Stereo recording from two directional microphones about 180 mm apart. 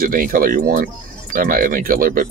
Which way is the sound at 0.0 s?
50° right (ahead or behind).